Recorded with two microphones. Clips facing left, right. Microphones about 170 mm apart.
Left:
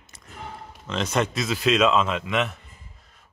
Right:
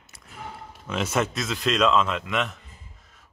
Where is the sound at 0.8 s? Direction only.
5° right (ahead or behind).